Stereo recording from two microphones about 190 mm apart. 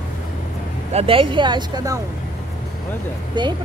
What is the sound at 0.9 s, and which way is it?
Speech, 30° right (ahead or behind).